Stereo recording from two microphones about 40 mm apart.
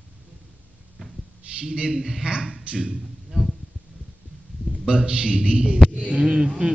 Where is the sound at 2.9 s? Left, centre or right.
Centre.